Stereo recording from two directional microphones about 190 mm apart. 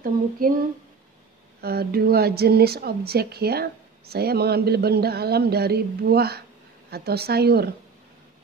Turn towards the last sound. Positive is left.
turn(degrees=-55)  # may be behind; listen again after turning